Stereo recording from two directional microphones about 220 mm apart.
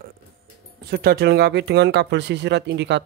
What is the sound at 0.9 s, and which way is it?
Speech, 45° right (ahead or behind).